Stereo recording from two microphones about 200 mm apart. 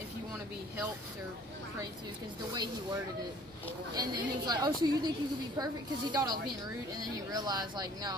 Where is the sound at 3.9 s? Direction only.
20° right (ahead or behind).